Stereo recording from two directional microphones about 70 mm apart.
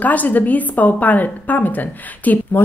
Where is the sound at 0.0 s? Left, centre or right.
Left.